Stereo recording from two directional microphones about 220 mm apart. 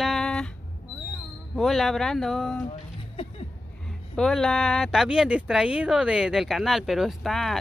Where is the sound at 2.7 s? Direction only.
25° left (ahead or behind).